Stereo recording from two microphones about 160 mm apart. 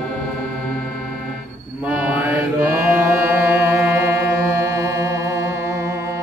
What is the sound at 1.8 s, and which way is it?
Music, 10° right (ahead or behind).